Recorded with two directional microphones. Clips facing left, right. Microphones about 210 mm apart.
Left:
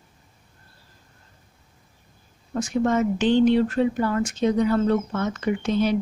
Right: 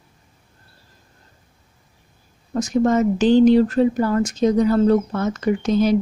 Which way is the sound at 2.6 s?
40° right (ahead or behind).